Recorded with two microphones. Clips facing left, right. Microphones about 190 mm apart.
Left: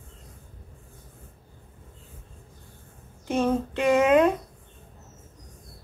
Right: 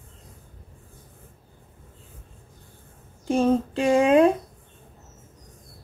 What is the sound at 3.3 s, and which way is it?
Speech, 30° right (ahead or behind).